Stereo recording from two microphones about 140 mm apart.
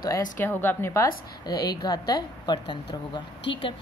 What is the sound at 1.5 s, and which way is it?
A woman's voice, 25° left (ahead or behind).